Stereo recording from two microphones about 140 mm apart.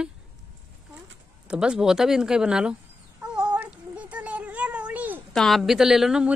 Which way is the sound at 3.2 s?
5° right (ahead or behind).